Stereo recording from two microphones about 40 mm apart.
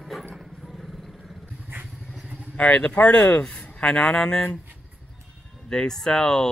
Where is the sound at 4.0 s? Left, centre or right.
Left.